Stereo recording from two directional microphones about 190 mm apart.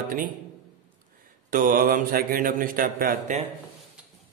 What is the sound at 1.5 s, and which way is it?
Speech, 45° right (ahead or behind).